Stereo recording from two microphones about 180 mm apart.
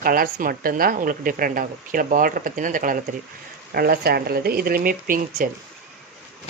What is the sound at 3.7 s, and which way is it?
Speech, 60° right (ahead or behind).